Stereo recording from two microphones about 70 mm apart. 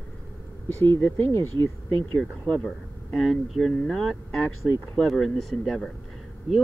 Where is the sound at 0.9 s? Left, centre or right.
Left.